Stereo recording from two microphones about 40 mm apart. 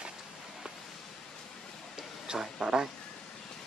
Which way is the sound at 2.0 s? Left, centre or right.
Centre.